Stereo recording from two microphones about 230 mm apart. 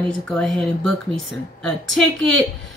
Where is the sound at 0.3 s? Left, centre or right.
Centre.